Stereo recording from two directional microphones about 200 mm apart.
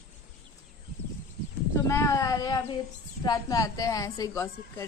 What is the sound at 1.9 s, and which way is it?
A woman's voice, 15° left (ahead or behind).